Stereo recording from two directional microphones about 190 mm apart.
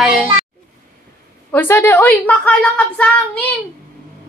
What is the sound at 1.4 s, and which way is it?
A woman's voice, 10° left (ahead or behind).